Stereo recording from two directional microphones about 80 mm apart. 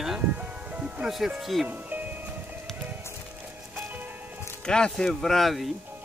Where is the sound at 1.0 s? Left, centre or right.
Centre.